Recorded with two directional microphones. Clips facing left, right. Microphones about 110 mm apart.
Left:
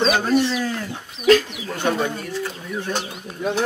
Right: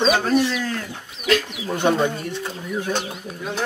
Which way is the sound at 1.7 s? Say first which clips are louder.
Right 3 dB; 20° right (ahead or behind).